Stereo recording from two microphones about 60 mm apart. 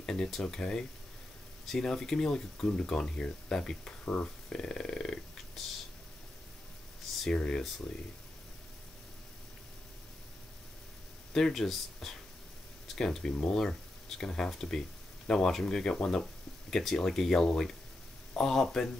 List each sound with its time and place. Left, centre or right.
0.0 s speech: centre
7.2 s speech: centre
11.3 s speech: centre